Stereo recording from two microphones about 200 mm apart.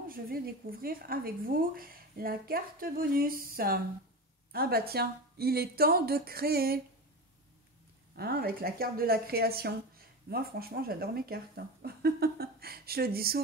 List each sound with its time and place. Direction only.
0.1 s a woman's voice: 45° right (ahead or behind)
8.2 s a woman's voice: 50° right (ahead or behind)